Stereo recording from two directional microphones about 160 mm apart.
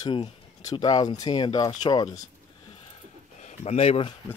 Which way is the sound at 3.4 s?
45° left (ahead or behind).